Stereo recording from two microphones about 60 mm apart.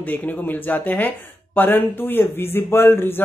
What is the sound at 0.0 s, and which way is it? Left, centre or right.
Speech, left.